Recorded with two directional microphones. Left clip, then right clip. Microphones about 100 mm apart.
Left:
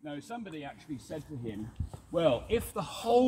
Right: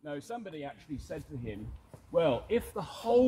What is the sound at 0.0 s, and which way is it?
Speech, 60° right (ahead or behind).